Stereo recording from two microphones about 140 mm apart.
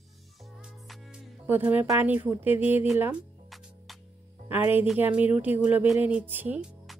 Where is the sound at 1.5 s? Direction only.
15° right (ahead or behind).